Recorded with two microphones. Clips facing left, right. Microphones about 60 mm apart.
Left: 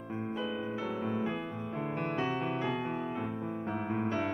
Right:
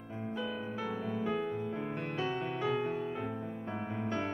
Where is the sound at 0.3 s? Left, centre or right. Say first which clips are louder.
Left 1 dB; centre.